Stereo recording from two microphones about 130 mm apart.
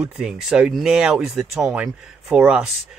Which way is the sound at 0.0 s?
5° right (ahead or behind).